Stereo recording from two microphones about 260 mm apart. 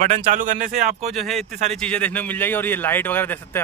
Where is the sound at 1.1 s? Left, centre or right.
Centre.